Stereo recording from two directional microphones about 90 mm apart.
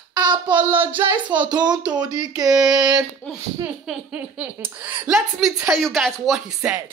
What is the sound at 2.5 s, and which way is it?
Speech, 5° right (ahead or behind).